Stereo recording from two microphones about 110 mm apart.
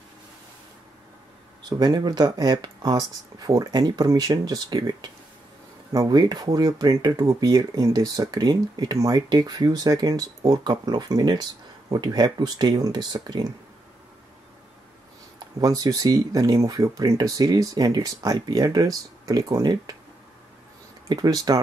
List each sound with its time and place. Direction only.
1.7 s speech: 40° right (ahead or behind)
15.3 s speech: 35° right (ahead or behind)
21.1 s speech: 35° right (ahead or behind)